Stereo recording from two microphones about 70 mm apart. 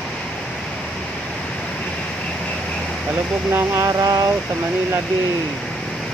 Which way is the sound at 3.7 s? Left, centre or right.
Right.